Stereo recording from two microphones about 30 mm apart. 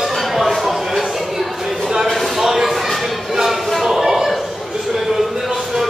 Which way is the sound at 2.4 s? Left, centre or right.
Centre.